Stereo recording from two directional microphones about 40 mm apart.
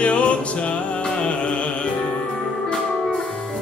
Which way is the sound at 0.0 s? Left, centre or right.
Left.